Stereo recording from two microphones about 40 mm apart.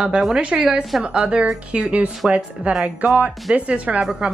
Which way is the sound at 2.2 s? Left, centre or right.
Centre.